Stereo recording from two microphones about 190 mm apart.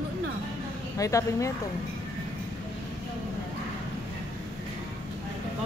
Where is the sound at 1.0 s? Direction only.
15° left (ahead or behind).